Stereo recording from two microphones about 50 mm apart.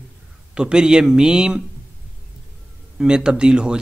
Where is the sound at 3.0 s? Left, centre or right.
Centre.